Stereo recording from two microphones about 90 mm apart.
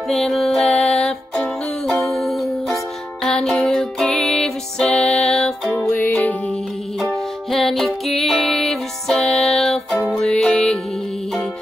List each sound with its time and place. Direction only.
0.1 s music: 5° left (ahead or behind)
2.1 s music: centre (ahead or behind)
5.7 s music: 20° left (ahead or behind)
7.5 s music: 5° left (ahead or behind)